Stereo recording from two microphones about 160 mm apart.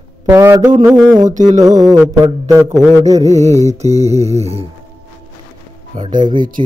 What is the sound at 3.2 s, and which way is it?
Mantra, 45° right (ahead or behind).